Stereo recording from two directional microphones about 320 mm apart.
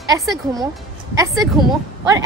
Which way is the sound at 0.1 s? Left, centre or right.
Centre.